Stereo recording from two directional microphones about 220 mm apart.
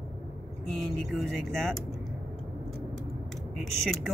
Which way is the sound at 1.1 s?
Centre (ahead or behind).